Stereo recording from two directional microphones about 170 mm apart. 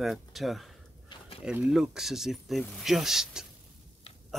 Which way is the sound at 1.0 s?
25° left (ahead or behind).